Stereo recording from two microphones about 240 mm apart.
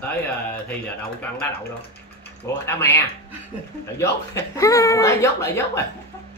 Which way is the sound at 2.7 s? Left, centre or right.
Centre.